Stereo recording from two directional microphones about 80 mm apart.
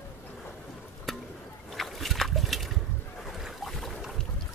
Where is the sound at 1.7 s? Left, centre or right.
Centre.